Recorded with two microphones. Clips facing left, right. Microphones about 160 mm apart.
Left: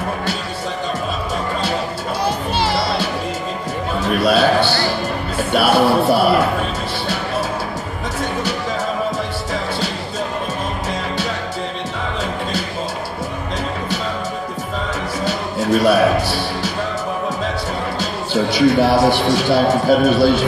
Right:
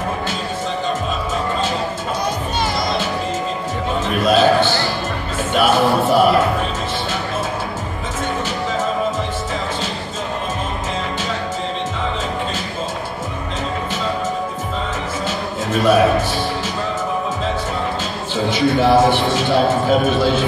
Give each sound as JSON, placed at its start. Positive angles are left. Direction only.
{"t": 2.2, "sound": "music", "side_deg": 30}
{"t": 4.0, "sound": "a sound", "side_deg": 35}
{"t": 5.4, "sound": "speech", "side_deg": 35}
{"t": 15.2, "sound": "music", "side_deg": 35}
{"t": 18.3, "sound": "a man's voice", "side_deg": 35}